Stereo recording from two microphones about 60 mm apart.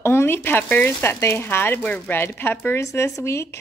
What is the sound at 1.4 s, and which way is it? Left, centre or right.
Speech, left.